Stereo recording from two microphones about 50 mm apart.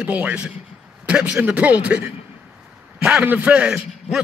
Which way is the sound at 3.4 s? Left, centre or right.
Right.